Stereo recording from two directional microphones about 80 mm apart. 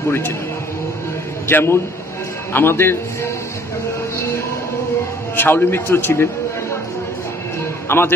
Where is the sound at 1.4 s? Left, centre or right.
Left.